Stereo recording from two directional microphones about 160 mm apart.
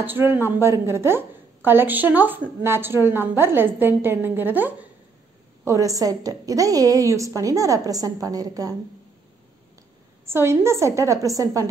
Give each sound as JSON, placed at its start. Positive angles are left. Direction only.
{"t": 0.0, "sound": "a woman's voice", "side_deg": -15}
{"t": 10.2, "sound": "a woman's voice", "side_deg": -15}